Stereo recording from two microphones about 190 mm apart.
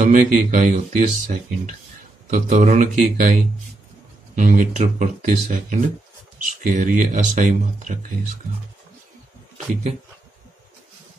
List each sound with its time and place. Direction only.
0.0 s speech: 45° right (ahead or behind)
2.3 s speech: 40° right (ahead or behind)
4.4 s speech: 45° right (ahead or behind)